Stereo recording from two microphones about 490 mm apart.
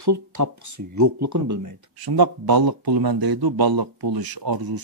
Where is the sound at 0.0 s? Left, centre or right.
Right.